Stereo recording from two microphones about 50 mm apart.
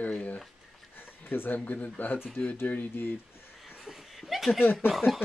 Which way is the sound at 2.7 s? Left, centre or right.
Left.